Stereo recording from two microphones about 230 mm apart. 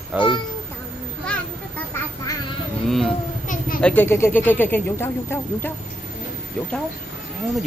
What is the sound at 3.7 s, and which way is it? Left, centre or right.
A man's voice, centre.